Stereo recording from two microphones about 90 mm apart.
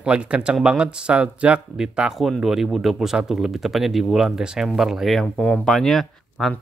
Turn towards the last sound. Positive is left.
turn(degrees=5)  # may be behind; listen again after turning